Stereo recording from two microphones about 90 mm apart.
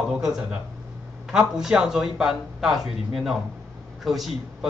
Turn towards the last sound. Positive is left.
turn(degrees=0)  # may be behind; listen again after turning